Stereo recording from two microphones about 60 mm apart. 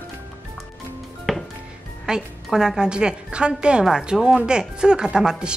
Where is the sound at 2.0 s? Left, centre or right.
Centre.